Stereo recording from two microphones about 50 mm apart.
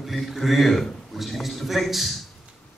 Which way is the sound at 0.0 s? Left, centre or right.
Centre.